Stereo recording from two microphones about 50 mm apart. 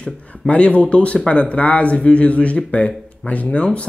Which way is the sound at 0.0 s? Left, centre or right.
Left.